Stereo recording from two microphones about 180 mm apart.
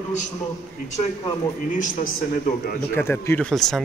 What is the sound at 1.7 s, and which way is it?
A man's voice, 50° left (ahead or behind).